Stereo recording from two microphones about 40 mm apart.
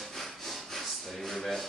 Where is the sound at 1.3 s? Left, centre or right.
Centre.